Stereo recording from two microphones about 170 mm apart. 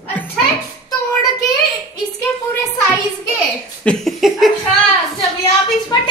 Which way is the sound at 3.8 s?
5° left (ahead or behind).